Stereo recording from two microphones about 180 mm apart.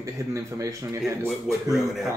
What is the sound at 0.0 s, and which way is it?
A man's voice, 15° right (ahead or behind).